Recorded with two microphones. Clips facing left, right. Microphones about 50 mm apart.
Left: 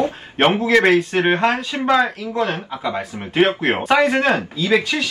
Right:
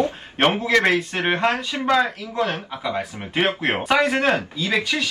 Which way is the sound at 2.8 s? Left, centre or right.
Centre.